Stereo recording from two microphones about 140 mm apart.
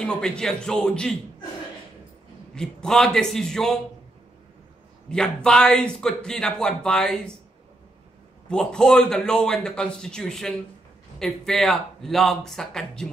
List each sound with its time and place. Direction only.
0.0 s a man's voice: 5° left (ahead or behind)
2.5 s a man's voice: 5° left (ahead or behind)
5.1 s a man's voice: 5° left (ahead or behind)
8.5 s a man's voice: 5° left (ahead or behind)